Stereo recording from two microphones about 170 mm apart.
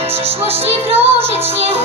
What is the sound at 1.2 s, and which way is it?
Music, 35° right (ahead or behind).